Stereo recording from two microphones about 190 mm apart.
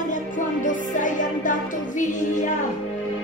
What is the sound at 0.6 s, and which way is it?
Music, 45° left (ahead or behind).